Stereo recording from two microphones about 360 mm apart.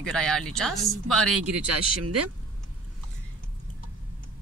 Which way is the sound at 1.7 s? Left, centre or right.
Right.